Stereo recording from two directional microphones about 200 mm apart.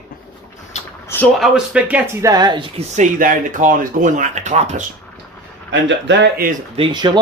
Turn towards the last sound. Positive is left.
turn(degrees=-20)  # may be behind; listen again after turning